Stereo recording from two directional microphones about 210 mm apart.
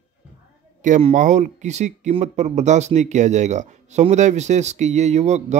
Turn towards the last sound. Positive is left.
turn(degrees=-35)  # may be behind; listen again after turning